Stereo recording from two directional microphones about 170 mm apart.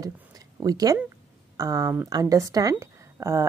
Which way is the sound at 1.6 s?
20° right (ahead or behind).